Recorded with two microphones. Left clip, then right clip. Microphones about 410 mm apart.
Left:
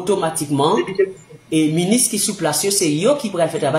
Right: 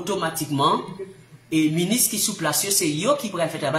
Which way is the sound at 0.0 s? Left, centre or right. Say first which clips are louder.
Left 6 dB; right.